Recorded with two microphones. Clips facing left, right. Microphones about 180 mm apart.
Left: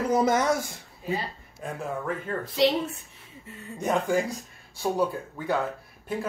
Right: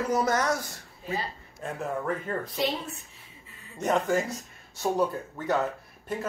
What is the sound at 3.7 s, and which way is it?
Speech, 10° left (ahead or behind).